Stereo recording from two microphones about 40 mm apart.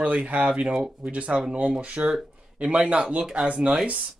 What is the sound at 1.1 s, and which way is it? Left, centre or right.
A man's voice, right.